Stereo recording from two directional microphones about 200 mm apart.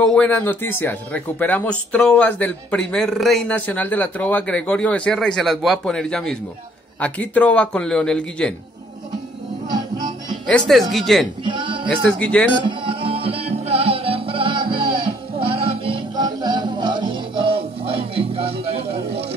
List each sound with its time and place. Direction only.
0.0 s a man's voice: 5° left (ahead or behind)
9.7 s music: 20° right (ahead or behind)
10.4 s a man's voice: centre (ahead or behind)
11.4 s music: 25° right (ahead or behind)
11.9 s a man's voice: 5° left (ahead or behind)
12.5 s music: 25° right (ahead or behind)